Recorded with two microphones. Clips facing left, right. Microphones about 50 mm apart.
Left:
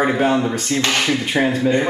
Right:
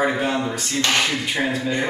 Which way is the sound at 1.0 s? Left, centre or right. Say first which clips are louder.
Left 4 dB; centre.